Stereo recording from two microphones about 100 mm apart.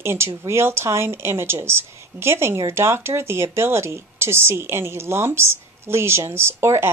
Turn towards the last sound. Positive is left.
turn(degrees=-25)  # may be behind; listen again after turning